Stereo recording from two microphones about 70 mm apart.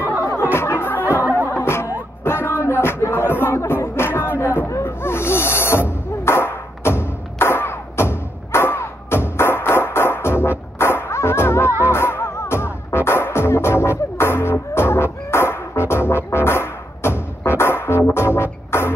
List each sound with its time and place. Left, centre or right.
0.2 s music: left
4.4 s snake: left
11.8 s music: left